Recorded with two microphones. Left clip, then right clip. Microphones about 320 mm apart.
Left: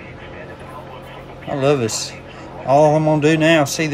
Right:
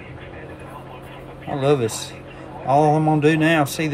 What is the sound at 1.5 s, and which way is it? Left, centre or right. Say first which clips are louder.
Speech: left 2 dB; centre.